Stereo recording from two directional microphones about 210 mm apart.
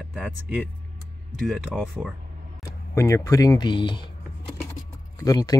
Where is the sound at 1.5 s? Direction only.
Centre (ahead or behind).